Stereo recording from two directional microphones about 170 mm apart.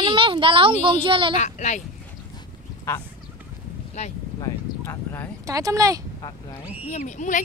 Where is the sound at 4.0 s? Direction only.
40° left (ahead or behind).